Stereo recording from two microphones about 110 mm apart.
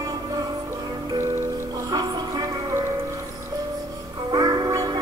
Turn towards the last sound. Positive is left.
turn(degrees=-35)  # may be behind; listen again after turning